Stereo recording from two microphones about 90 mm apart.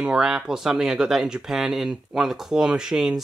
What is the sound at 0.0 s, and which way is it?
Speech, 5° right (ahead or behind).